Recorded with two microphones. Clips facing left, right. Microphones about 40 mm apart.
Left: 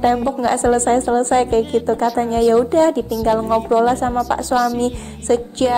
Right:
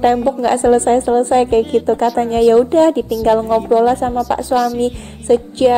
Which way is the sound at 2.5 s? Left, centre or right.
Right.